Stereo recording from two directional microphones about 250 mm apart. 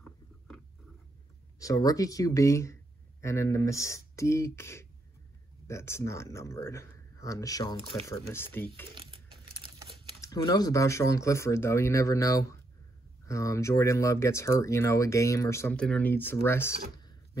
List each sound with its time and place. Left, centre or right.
1.6 s speech: centre
8.9 s a sound: centre
10.2 s speech: centre